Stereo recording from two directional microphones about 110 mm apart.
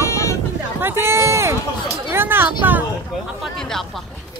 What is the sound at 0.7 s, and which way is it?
Run, 20° right (ahead or behind).